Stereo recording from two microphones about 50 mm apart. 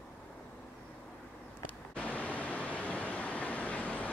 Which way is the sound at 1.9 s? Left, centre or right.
Left.